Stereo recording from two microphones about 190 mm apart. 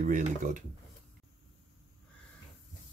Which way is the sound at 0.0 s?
40° right (ahead or behind).